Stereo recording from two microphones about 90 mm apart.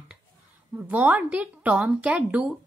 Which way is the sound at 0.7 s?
20° right (ahead or behind).